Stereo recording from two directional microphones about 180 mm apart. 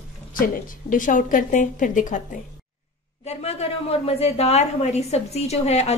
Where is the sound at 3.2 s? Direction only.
35° left (ahead or behind).